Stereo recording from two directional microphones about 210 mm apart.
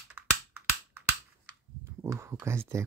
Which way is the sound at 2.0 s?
15° right (ahead or behind).